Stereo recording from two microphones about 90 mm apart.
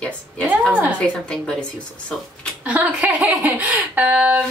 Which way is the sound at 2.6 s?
15° right (ahead or behind).